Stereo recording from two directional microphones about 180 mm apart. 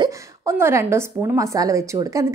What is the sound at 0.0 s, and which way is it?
A woman's voice, 15° right (ahead or behind).